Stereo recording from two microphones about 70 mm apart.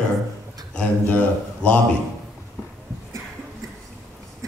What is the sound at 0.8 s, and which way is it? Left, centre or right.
A man's voice, centre.